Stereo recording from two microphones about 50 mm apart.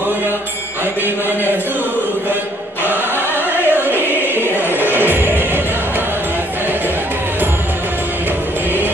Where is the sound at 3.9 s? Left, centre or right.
Right.